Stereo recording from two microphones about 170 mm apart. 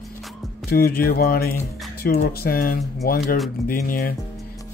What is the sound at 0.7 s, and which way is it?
Speech, 60° left (ahead or behind).